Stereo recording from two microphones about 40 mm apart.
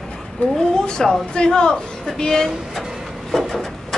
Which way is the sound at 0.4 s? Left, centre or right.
Left.